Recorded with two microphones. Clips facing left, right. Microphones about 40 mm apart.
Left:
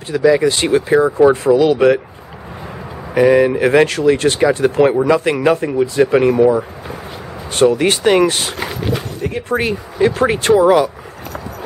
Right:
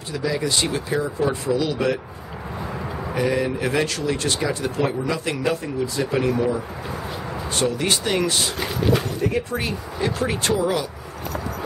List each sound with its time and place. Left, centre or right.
0.1 s a man's voice: left
3.2 s a man's voice: left
7.5 s speech: left
8.9 s a sound: centre
9.5 s a man's voice: left